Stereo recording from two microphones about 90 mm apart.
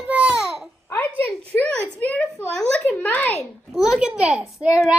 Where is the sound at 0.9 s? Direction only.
25° left (ahead or behind).